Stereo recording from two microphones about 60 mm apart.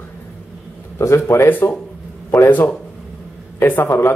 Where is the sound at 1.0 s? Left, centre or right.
Left.